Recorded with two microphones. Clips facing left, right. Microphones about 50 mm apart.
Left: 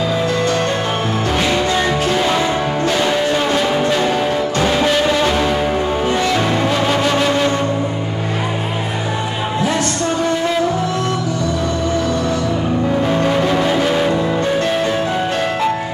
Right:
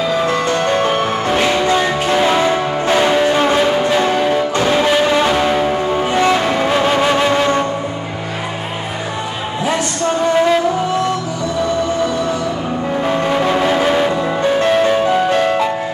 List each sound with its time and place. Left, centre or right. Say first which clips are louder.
0.3 s music: right 2 dB; right
13.0 s music: right 3 dB; centre